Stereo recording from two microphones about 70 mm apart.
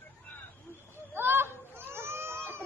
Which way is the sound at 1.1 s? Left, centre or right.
Right.